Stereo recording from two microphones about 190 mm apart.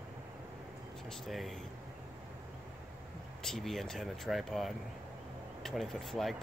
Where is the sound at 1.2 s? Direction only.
Centre (ahead or behind).